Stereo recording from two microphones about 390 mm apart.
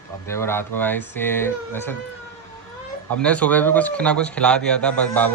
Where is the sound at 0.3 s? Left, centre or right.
Centre.